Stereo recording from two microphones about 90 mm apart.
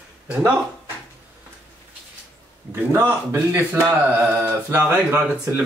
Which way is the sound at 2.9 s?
30° right (ahead or behind).